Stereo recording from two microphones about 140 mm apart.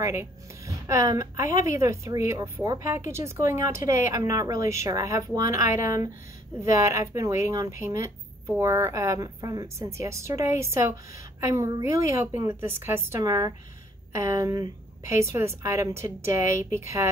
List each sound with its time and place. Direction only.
0.0 s a woman's voice: 20° right (ahead or behind)